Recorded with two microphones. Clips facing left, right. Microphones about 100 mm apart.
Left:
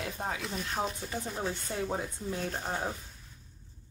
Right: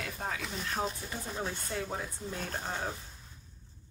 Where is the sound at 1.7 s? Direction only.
30° left (ahead or behind).